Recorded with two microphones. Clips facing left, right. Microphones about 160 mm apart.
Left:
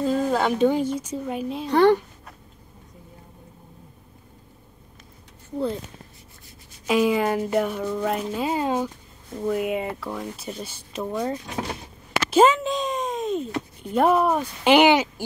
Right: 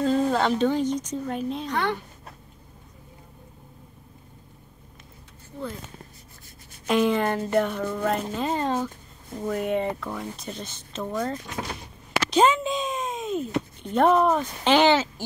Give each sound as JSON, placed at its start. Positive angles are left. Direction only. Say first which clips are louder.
{"t": 0.0, "sound": "speech", "louder": "even", "side_deg": 5}
{"t": 1.7, "sound": "speech", "louder": "left 13 dB", "side_deg": 35}
{"t": 6.9, "sound": "speech", "louder": "left 1 dB", "side_deg": 5}
{"t": 12.3, "sound": "a sound", "louder": "left 3 dB", "side_deg": 0}